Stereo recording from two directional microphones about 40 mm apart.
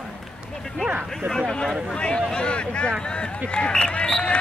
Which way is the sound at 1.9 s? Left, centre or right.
Left.